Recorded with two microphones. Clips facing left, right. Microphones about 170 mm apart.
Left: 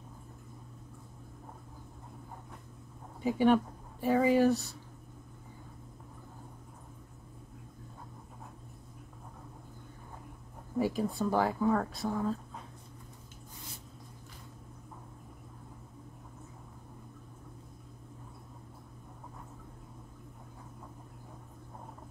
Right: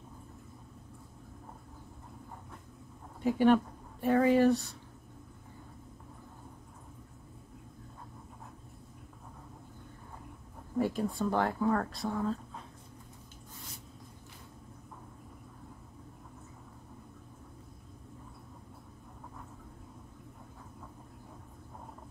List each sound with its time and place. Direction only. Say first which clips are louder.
3.2 s speech: right 1 dB; centre (ahead or behind)
10.8 s speech: even; centre (ahead or behind)